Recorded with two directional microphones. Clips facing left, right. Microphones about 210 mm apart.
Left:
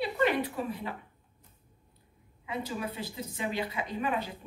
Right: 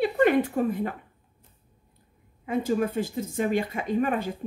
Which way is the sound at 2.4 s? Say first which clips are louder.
Right 10 dB; 50° right (ahead or behind).